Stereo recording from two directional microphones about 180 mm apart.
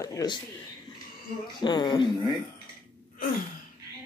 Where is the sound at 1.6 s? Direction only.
25° left (ahead or behind).